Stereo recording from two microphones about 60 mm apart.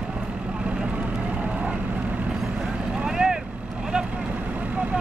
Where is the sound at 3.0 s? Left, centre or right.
Centre.